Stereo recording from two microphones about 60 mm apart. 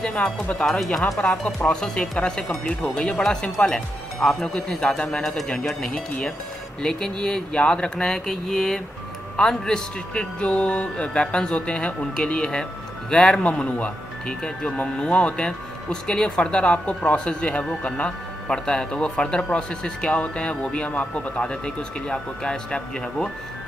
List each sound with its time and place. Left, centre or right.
0.0 s speech: centre
0.7 s speech: centre
1.3 s speech: centre
5.2 s speech: centre
13.4 s speech: left